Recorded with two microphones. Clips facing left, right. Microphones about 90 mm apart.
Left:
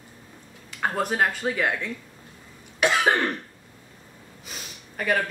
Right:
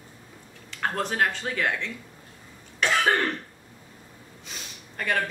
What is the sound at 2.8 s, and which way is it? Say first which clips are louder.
Cough: left 2 dB; 10° left (ahead or behind).